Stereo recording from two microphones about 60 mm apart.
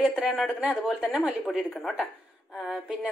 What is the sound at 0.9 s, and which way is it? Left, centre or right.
Speech, centre.